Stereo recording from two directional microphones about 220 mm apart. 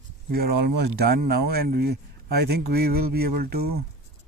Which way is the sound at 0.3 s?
45° right (ahead or behind).